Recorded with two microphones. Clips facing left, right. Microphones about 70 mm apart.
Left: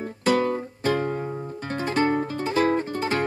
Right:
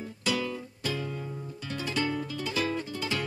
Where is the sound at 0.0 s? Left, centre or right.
Left.